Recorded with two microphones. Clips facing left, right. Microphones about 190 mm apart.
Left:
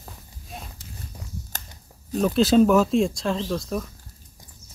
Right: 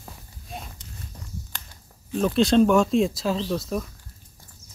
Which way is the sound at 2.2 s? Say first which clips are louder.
Left 1 dB; 5° left (ahead or behind).